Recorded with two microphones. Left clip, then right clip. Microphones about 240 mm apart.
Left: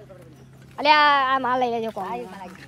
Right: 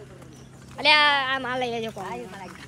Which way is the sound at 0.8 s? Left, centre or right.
Centre.